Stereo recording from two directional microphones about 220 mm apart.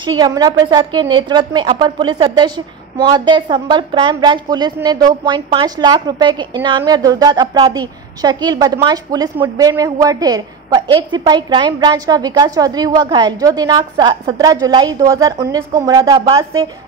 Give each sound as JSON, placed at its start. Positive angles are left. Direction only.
{"t": 0.0, "sound": "a woman's voice", "side_deg": -20}